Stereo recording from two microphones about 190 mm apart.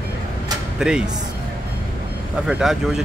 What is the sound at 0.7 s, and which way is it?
Speech, 5° right (ahead or behind).